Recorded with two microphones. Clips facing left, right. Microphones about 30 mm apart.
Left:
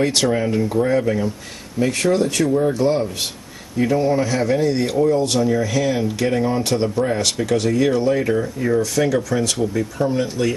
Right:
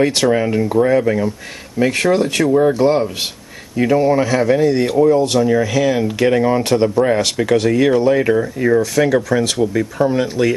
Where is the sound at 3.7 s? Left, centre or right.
Right.